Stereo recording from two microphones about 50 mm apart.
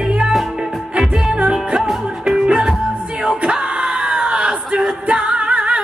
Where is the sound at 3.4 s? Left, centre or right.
Centre.